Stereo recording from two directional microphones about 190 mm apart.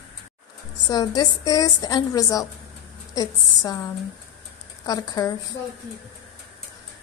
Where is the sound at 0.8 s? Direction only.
20° left (ahead or behind).